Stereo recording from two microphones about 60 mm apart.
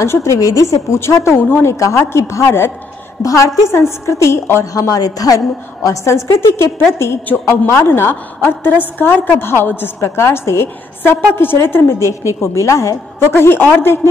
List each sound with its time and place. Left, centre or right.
0.0 s a woman's voice: left
0.4 s a woman's voice: left
0.9 s a woman's voice: left
1.3 s a woman's voice: left
1.7 s a woman's voice: left
3.2 s a woman's voice: left
4.7 s a woman's voice: left
6.0 s a woman's voice: left
11.5 s a woman's voice: left